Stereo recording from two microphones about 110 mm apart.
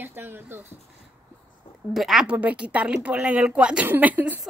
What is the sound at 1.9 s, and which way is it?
Speech, centre (ahead or behind).